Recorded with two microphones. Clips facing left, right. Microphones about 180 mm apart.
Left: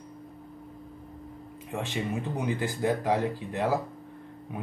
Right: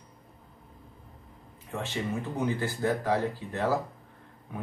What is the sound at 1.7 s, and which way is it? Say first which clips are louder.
Speech: left 1 dB; 15° left (ahead or behind).